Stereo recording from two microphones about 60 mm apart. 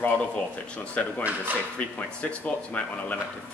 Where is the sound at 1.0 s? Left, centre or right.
Left.